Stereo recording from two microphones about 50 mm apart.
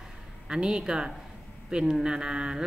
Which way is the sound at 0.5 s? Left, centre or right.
Centre.